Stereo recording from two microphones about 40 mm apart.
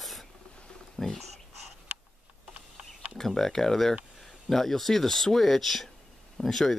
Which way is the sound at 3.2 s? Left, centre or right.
Centre.